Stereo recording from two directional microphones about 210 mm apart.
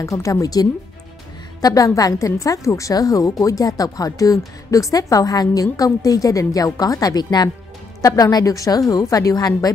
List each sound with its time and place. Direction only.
0.0 s a woman's voice: 15° left (ahead or behind)